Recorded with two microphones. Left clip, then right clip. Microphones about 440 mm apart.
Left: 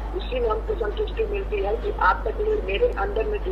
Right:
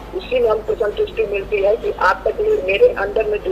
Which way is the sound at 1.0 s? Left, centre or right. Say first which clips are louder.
Right 7 dB; right.